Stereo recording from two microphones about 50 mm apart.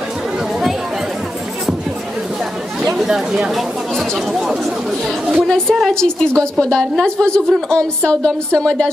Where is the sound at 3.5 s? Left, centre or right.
Centre.